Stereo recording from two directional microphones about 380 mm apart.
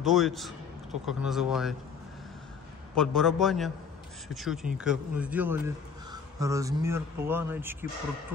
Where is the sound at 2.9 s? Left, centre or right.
Centre.